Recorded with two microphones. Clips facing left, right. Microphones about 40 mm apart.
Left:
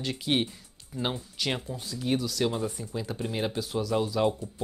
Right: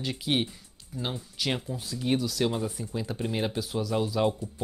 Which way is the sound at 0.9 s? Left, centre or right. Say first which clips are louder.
Left 3 dB; centre.